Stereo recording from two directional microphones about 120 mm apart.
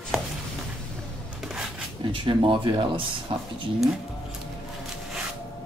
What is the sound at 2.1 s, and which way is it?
Speech, 45° right (ahead or behind).